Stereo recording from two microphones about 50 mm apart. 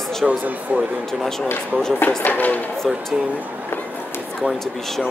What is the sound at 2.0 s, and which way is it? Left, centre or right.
Speech, left.